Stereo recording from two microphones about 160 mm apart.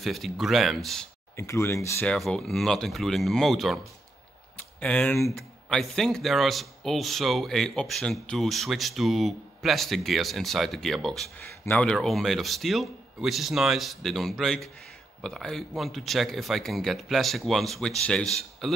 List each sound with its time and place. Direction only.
0.0 s speech: centre (ahead or behind)
1.3 s speech: 15° left (ahead or behind)
2.0 s speech: 5° left (ahead or behind)